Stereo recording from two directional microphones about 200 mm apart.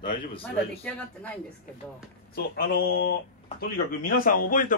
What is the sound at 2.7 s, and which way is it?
A man's voice, 55° left (ahead or behind).